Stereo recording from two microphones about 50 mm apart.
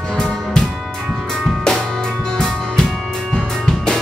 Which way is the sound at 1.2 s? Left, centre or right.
Centre.